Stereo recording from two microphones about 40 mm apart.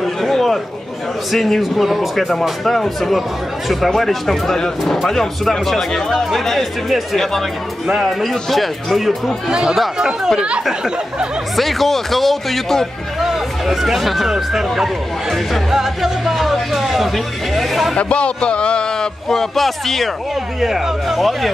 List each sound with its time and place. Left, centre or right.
0.0 s a sound: centre
1.3 s speech: centre
7.8 s speech: centre
8.2 s speech: centre
9.5 s speech: centre
11.5 s speech: centre
13.2 s speech: centre
17.9 s a man's voice: left
19.2 s speech: centre
20.6 s speech: centre